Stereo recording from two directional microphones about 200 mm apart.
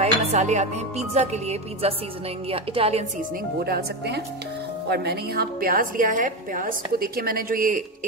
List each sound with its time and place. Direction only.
0.0 s speech: 35° right (ahead or behind)
3.5 s a woman's voice: 50° right (ahead or behind)